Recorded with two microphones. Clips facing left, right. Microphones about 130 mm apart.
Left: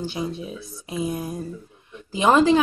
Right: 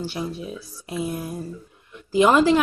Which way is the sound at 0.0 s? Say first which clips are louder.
Left 1 dB; 20° left (ahead or behind).